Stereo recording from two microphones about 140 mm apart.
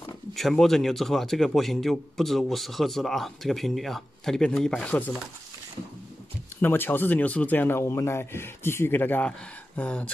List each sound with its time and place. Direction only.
0.3 s a man's voice: centre (ahead or behind)
6.6 s speech: 15° left (ahead or behind)